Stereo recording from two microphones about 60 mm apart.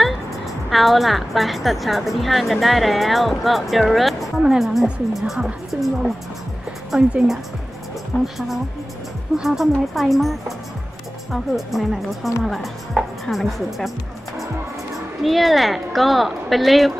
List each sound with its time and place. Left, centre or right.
0.7 s a woman's voice: centre
7.0 s speech: centre
8.1 s speech: left
9.4 s a woman's voice: centre
15.2 s a woman's voice: centre